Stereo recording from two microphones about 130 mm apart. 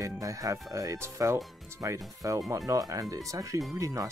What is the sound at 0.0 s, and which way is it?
Speech, 25° right (ahead or behind).